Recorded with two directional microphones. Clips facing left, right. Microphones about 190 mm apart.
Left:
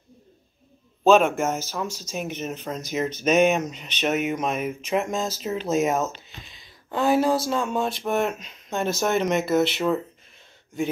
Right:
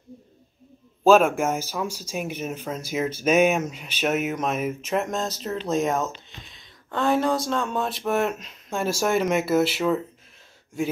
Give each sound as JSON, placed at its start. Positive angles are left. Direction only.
{"t": 1.0, "sound": "speech", "side_deg": -5}